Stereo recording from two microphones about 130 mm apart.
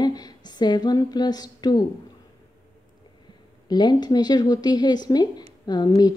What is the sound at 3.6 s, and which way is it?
Speech, 35° left (ahead or behind).